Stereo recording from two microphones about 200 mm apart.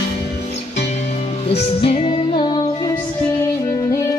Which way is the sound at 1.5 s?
30° left (ahead or behind).